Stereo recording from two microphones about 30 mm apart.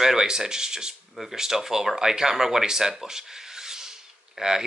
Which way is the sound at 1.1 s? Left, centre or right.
Centre.